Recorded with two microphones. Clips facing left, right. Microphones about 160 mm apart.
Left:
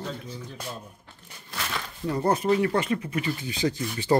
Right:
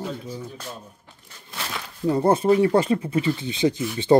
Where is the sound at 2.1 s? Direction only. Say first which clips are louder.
Right 5 dB; 25° right (ahead or behind).